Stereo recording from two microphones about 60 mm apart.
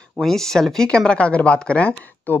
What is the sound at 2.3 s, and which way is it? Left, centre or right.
Speech, left.